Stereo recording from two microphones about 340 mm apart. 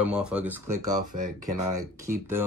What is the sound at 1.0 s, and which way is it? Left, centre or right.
Speech, right.